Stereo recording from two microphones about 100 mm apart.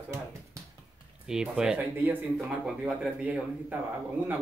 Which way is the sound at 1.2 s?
10° right (ahead or behind).